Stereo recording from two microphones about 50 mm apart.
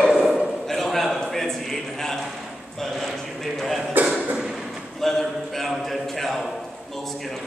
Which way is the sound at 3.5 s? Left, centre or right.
Centre.